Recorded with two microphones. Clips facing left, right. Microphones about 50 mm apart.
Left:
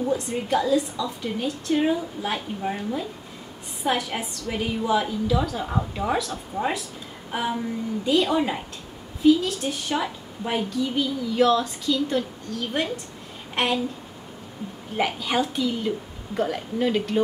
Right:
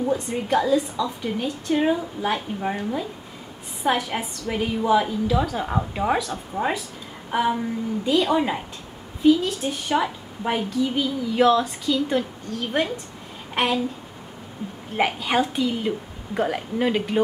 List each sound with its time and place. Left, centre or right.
0.1 s speech: centre
3.8 s a woman's voice: centre
5.7 s a woman's voice: centre
6.2 s a woman's voice: centre
15.0 s speech: centre